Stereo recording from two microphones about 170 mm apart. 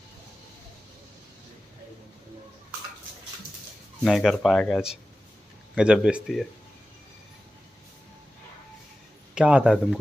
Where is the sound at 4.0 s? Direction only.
Centre (ahead or behind).